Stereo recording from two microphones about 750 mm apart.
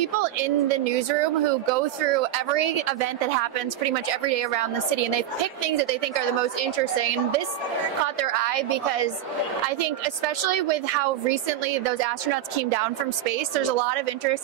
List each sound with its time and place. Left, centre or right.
0.0 s a woman's voice: right
13.7 s a woman's voice: right